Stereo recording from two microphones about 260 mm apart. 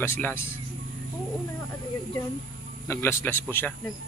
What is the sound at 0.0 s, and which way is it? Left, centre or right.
Speech, centre.